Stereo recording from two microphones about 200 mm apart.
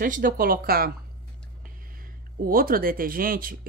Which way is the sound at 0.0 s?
45° right (ahead or behind).